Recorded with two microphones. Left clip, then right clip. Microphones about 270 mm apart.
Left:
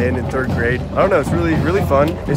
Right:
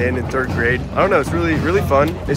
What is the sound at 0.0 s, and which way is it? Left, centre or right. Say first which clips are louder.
Speech: even; centre.